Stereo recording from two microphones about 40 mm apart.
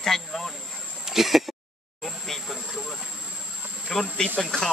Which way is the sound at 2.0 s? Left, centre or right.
Centre.